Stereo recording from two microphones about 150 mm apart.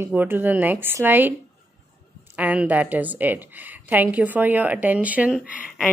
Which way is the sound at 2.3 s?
10° right (ahead or behind).